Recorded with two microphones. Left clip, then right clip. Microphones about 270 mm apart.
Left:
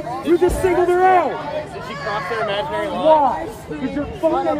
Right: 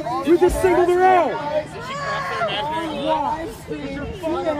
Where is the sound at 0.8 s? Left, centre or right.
Centre.